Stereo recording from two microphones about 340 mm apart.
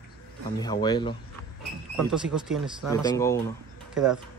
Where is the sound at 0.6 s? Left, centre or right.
Centre.